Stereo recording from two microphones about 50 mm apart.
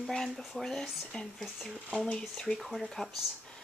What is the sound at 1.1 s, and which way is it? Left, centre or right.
Speech, left.